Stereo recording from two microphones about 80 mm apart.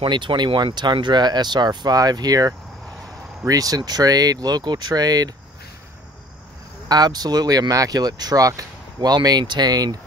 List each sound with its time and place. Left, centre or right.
0.1 s speech: right
6.9 s speech: right